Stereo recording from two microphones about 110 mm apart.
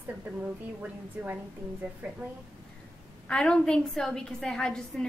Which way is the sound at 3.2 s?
10° left (ahead or behind).